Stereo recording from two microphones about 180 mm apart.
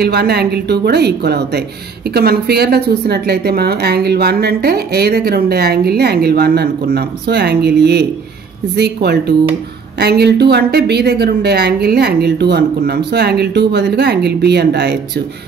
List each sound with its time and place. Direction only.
0.0 s a woman's voice: 65° right (ahead or behind)